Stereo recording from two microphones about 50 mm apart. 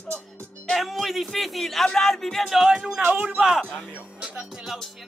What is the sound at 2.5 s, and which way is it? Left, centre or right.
Speech, centre.